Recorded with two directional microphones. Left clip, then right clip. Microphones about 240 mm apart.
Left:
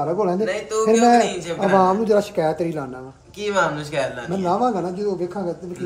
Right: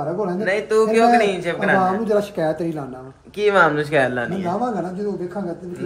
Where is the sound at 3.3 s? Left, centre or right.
Right.